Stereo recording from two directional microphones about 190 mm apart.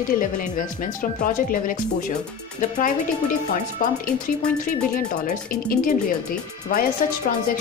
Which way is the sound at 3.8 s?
45° left (ahead or behind).